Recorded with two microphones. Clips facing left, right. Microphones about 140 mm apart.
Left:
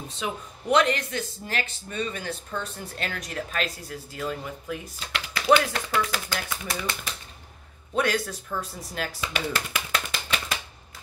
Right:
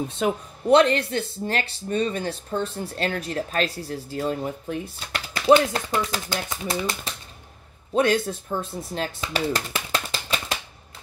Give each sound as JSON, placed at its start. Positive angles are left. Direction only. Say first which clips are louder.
{"t": 0.2, "sound": "speech", "louder": "right 8 dB", "side_deg": -50}
{"t": 0.7, "sound": "speech", "louder": "right 5 dB", "side_deg": -30}
{"t": 7.9, "sound": "speech", "louder": "right 5 dB", "side_deg": -25}